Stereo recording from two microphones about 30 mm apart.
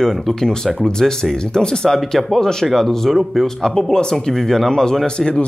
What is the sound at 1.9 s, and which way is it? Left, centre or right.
Speech, centre.